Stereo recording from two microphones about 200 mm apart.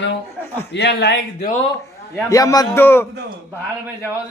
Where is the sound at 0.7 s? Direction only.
60° left (ahead or behind).